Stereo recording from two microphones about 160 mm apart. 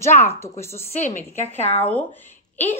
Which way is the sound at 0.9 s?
45° left (ahead or behind).